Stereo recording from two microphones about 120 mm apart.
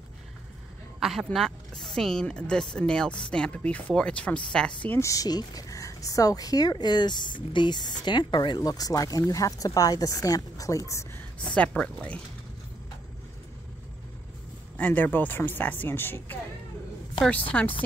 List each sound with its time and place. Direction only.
0.9 s speech: centre (ahead or behind)
5.0 s a woman's voice: 30° left (ahead or behind)
11.3 s speech: 10° left (ahead or behind)
14.8 s speech: 15° left (ahead or behind)
17.5 s speech: 10° left (ahead or behind)